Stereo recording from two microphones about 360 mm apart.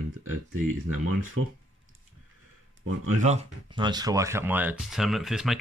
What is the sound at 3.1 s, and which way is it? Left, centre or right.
Speech, centre.